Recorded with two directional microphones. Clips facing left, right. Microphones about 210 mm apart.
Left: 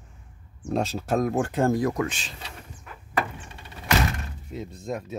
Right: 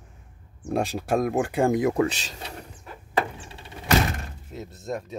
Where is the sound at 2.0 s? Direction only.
40° right (ahead or behind).